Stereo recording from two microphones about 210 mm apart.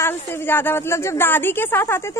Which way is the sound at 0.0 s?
10° left (ahead or behind).